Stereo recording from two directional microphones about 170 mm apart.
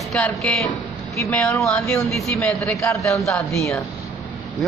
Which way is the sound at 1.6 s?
5° left (ahead or behind).